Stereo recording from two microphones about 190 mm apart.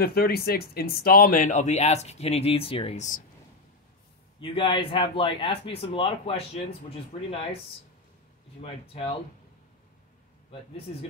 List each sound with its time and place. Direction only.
0.0 s speech: 55° left (ahead or behind)
4.4 s speech: 25° left (ahead or behind)
8.5 s speech: 30° left (ahead or behind)
10.9 s speech: 35° left (ahead or behind)